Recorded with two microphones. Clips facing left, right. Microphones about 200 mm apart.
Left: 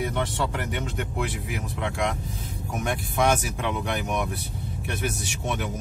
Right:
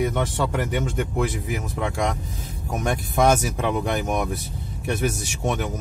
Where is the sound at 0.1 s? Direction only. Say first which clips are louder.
Right 3 dB; 45° right (ahead or behind).